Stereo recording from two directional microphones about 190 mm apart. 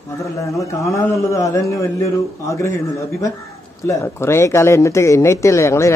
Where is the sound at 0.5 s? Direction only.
15° left (ahead or behind).